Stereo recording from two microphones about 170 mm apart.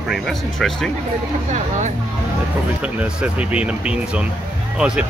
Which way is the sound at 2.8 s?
5° right (ahead or behind).